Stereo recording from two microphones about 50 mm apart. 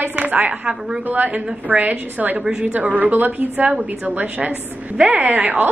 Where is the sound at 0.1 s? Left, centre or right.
Right.